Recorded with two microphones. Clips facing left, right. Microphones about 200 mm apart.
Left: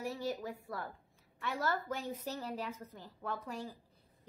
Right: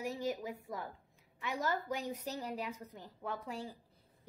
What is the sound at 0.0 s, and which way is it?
A woman's voice, 15° right (ahead or behind).